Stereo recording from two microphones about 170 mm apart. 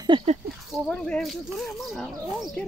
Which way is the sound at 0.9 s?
5° left (ahead or behind).